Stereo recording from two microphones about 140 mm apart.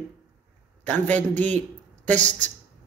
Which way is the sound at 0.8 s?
10° left (ahead or behind).